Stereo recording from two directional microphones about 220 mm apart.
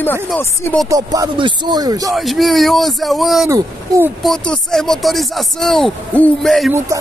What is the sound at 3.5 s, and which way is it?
Speech, 15° right (ahead or behind).